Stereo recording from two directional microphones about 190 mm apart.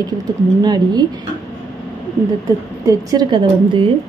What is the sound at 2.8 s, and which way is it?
A woman's voice, 20° right (ahead or behind).